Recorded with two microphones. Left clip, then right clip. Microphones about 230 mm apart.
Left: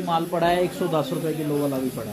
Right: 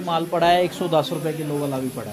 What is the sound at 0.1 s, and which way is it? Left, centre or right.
Speech, right.